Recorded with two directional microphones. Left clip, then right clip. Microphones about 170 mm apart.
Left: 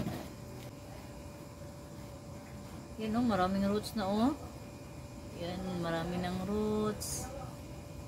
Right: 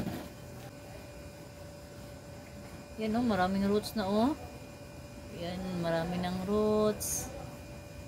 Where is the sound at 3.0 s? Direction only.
30° right (ahead or behind).